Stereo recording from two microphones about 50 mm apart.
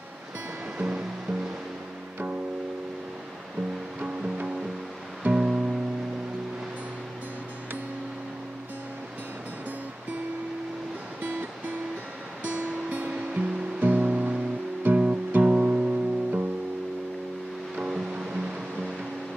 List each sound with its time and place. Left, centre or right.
0.7 s music: right
5.2 s music: centre
12.4 s music: right
14.8 s music: right
15.4 s music: right
17.8 s music: centre